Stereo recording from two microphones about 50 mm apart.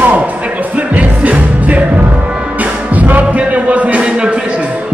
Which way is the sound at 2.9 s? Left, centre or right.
Right.